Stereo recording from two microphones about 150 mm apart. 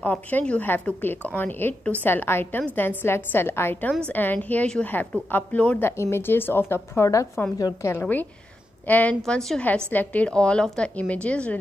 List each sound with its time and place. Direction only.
0.0 s a woman's voice: 10° left (ahead or behind)